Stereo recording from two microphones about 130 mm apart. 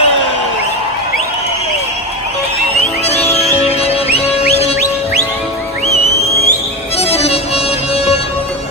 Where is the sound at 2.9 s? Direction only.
55° left (ahead or behind).